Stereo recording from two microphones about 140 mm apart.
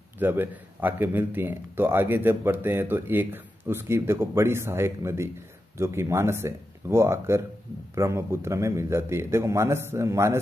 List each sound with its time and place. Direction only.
0.2 s a man's voice: 15° right (ahead or behind)